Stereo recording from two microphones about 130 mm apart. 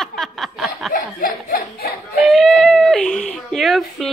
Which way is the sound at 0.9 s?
90° left.